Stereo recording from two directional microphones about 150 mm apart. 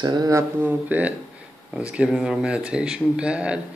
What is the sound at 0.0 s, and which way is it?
Speech, 25° right (ahead or behind).